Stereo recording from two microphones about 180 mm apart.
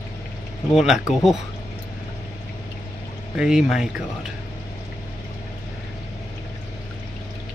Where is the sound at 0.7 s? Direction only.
Centre (ahead or behind).